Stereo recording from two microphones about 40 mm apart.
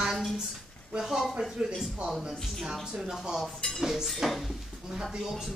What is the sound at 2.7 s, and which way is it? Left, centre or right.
A woman's voice, centre.